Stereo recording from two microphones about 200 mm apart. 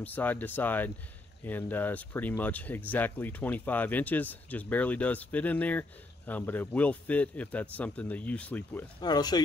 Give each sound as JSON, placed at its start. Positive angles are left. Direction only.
{"t": 0.0, "sound": "speech", "side_deg": 10}
{"t": 9.0, "sound": "speech", "side_deg": 20}